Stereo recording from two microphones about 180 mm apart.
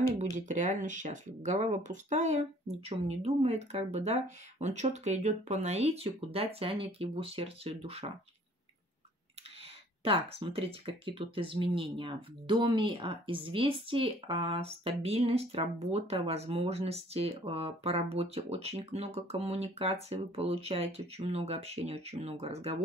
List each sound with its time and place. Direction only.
0.1 s speech: 40° right (ahead or behind)
10.0 s speech: 30° right (ahead or behind)